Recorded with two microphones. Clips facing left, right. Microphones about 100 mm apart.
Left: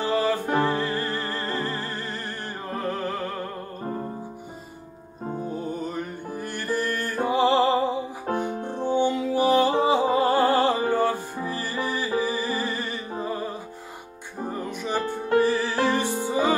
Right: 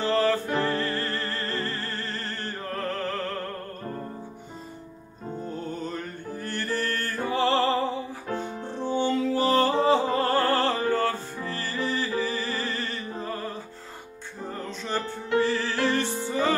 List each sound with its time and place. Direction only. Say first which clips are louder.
0.0 s music: even; 15° left (ahead or behind)
5.5 s music: left 3 dB; 10° left (ahead or behind)
8.3 s music: left 5 dB; 40° left (ahead or behind)
8.6 s music: left 2 dB; 15° left (ahead or behind)